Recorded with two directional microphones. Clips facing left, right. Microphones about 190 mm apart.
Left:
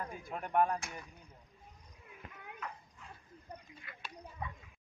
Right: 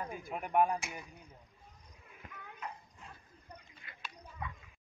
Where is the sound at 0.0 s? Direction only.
10° right (ahead or behind).